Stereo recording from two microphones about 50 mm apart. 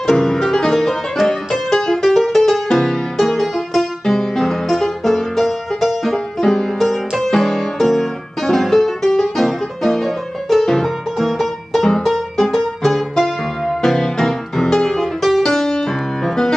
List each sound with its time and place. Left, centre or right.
0.0 s music: centre